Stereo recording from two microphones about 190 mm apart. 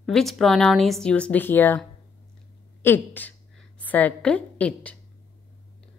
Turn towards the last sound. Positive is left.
turn(degrees=5)  # may be behind; listen again after turning